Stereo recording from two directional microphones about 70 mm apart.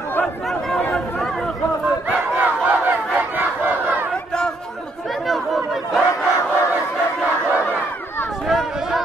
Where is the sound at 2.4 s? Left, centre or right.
Right.